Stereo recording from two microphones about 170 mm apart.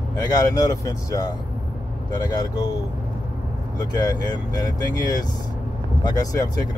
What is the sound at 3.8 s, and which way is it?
Speech, 25° left (ahead or behind).